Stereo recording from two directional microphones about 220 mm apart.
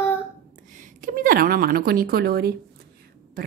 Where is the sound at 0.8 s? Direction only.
35° right (ahead or behind).